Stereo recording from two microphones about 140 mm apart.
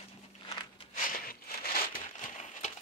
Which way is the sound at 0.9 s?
80° left.